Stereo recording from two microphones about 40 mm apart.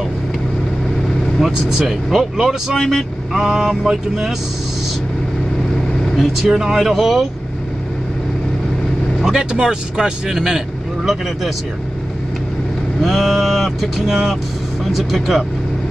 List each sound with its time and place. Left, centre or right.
1.4 s speech: centre
2.8 s vehicle: centre
6.1 s vehicle: centre
9.2 s speech: centre
13.0 s vehicle: centre